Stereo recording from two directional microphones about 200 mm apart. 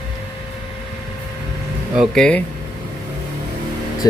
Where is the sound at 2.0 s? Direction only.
5° left (ahead or behind).